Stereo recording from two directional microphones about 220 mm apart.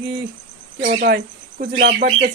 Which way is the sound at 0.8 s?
45° right (ahead or behind).